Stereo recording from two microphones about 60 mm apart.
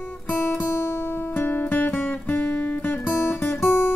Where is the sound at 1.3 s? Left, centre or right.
Left.